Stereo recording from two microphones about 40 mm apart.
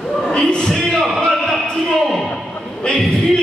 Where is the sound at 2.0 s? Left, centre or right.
Centre.